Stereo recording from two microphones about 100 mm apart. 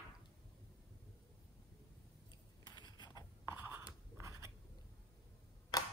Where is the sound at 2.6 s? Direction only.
50° left (ahead or behind).